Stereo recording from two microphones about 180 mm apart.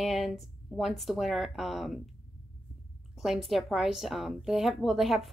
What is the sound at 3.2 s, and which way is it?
Speech, centre (ahead or behind).